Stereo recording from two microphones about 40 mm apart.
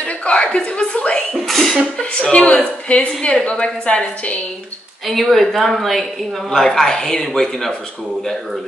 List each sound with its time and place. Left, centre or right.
0.0 s a woman's voice: left
1.3 s speech: centre
2.0 s a woman's voice: left
5.0 s speech: centre